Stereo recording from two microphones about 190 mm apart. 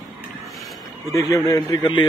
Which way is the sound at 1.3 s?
20° left (ahead or behind).